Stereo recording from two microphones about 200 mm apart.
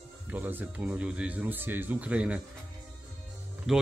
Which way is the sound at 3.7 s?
Centre (ahead or behind).